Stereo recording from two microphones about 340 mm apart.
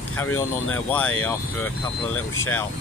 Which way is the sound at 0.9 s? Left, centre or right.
Centre.